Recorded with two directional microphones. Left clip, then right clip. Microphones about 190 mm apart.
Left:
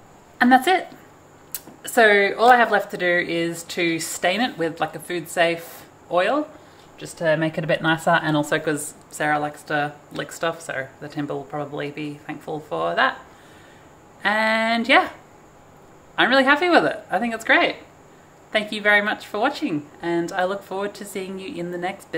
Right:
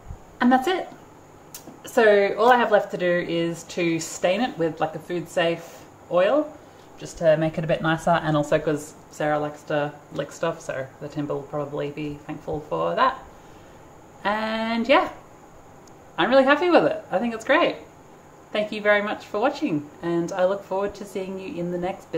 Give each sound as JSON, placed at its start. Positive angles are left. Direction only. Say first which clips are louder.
{"t": 0.4, "sound": "speech", "louder": "left 4 dB", "side_deg": 5}
{"t": 7.0, "sound": "speech", "louder": "right 1 dB", "side_deg": 30}
{"t": 8.4, "sound": "speech", "louder": "even", "side_deg": 0}
{"t": 14.2, "sound": "speech", "louder": "left 5 dB", "side_deg": 0}
{"t": 16.2, "sound": "speech", "louder": "left 1 dB", "side_deg": 0}